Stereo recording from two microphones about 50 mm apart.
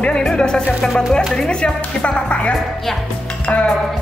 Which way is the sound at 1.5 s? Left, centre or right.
Left.